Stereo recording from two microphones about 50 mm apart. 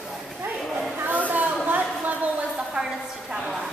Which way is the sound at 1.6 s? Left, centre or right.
Right.